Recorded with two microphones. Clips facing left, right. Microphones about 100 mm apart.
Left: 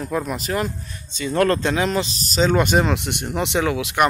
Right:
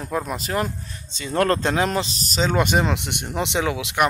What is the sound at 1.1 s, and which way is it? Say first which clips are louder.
Speech: left 2 dB; 30° right (ahead or behind).